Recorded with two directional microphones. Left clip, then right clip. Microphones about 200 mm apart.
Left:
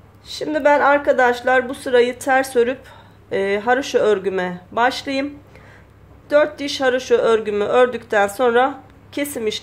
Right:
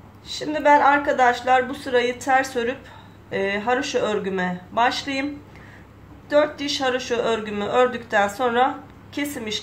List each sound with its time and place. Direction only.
0.3 s speech: 45° left (ahead or behind)
6.2 s speech: 45° left (ahead or behind)